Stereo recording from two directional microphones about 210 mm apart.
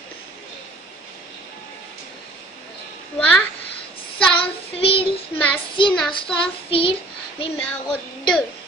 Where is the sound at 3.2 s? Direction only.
5° left (ahead or behind).